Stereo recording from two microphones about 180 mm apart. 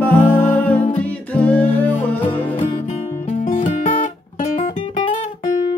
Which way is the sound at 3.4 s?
45° left (ahead or behind).